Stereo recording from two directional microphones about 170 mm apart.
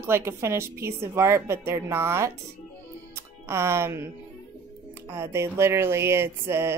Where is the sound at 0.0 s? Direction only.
15° right (ahead or behind).